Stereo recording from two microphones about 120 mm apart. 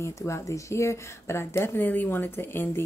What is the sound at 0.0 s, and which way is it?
Speech, 25° left (ahead or behind).